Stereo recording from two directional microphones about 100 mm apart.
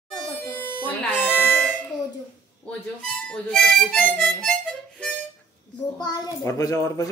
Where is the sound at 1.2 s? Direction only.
15° left (ahead or behind).